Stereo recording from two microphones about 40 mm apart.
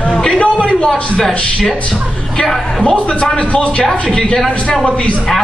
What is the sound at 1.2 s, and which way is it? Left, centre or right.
Speech, centre.